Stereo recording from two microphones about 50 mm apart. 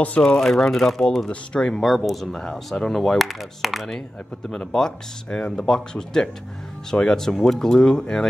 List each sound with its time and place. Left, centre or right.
0.2 s speech: centre
1.3 s speech: centre
1.8 s speech: centre
2.3 s speech: centre
4.5 s speech: centre